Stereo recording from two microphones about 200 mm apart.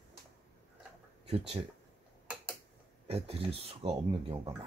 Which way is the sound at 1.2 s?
30° right (ahead or behind).